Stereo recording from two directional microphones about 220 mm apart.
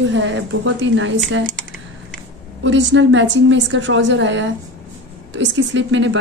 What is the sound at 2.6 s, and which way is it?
A woman's voice, 55° right (ahead or behind).